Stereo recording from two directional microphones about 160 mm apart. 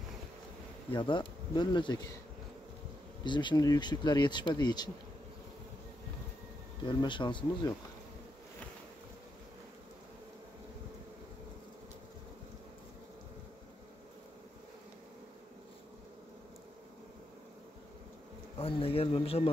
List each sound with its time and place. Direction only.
0.9 s speech: 30° left (ahead or behind)
3.3 s speech: 30° left (ahead or behind)
6.8 s speech: 30° left (ahead or behind)
18.6 s a man's voice: 35° left (ahead or behind)